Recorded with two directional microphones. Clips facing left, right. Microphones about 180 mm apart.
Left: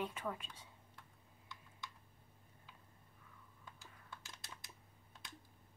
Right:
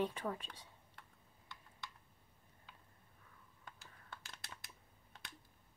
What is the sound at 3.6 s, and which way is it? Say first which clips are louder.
Computer keyboard: right 1 dB; 65° right (ahead or behind).